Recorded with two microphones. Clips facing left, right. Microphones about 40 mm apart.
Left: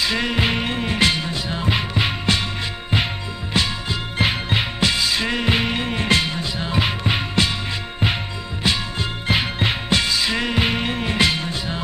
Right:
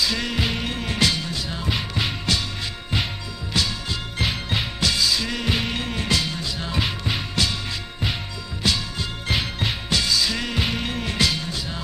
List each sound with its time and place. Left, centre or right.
0.0 s music: left
3.6 s music: left
8.6 s music: left